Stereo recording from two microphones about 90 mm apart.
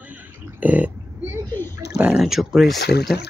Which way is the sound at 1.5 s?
25° left (ahead or behind).